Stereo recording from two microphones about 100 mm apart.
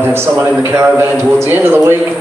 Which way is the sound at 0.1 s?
25° right (ahead or behind).